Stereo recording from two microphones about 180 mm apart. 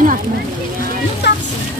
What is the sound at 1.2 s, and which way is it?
Speech, 70° left (ahead or behind).